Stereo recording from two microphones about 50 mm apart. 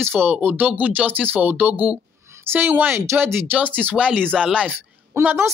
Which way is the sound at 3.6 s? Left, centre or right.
Right.